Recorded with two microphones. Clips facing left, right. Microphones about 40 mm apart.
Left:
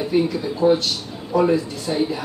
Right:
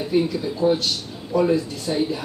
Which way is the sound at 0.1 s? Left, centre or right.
Centre.